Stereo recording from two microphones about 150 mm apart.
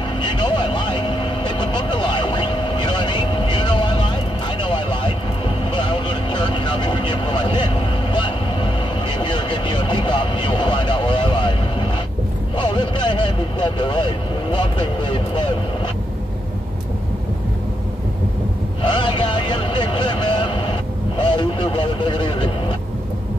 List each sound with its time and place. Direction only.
0.2 s vehicle: 30° left (ahead or behind)
18.8 s music: 30° left (ahead or behind)
21.2 s vehicle: 35° left (ahead or behind)